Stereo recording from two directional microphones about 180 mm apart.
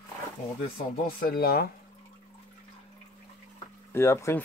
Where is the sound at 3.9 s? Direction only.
15° left (ahead or behind).